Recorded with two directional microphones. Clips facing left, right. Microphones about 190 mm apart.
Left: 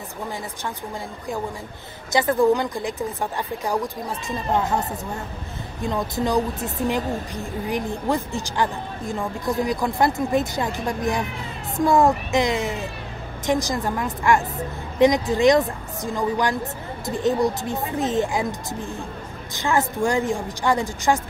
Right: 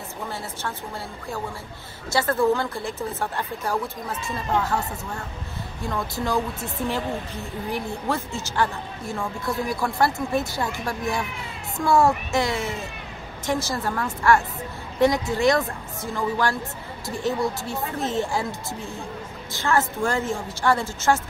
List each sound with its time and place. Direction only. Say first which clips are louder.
2.1 s speech: left 3 dB; 15° left (ahead or behind)